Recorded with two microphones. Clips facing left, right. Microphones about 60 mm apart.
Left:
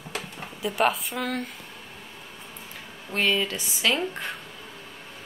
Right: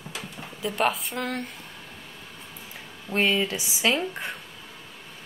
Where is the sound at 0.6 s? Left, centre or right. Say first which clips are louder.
Left 1 dB; centre.